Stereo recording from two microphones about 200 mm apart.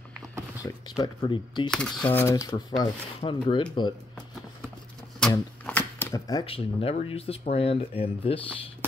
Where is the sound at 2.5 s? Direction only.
25° left (ahead or behind).